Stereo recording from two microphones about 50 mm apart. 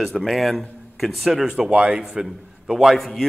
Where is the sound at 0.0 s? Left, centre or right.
Centre.